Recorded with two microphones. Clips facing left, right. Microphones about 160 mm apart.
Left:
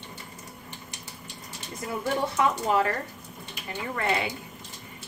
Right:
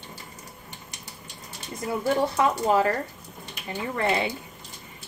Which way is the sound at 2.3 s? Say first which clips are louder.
Right 2 dB; 30° right (ahead or behind).